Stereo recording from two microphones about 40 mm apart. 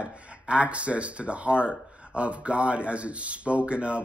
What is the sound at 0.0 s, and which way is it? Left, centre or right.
Speech, right.